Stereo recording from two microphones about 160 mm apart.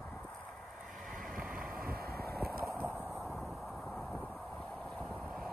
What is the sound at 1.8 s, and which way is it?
Vehicle, 70° right (ahead or behind).